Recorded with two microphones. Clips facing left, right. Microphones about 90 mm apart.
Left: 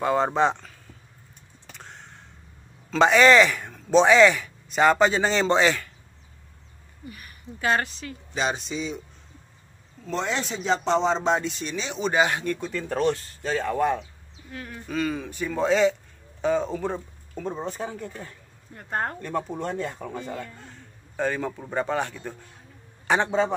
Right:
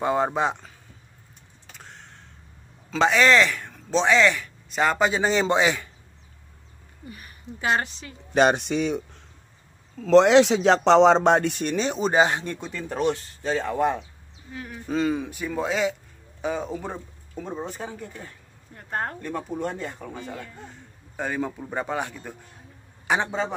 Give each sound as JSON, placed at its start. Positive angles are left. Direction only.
{"t": 0.0, "sound": "speech", "side_deg": -15}
{"t": 1.8, "sound": "a sound", "side_deg": 0}
{"t": 2.9, "sound": "speech", "side_deg": 0}
{"t": 7.1, "sound": "speech", "side_deg": -25}
{"t": 8.3, "sound": "speech", "side_deg": -55}
{"t": 10.0, "sound": "speech", "side_deg": -90}
{"t": 12.8, "sound": "speech", "side_deg": -10}
{"t": 13.1, "sound": "speech", "side_deg": -20}
{"t": 14.9, "sound": "speech", "side_deg": -25}
{"t": 15.2, "sound": "a man's voice", "side_deg": -10}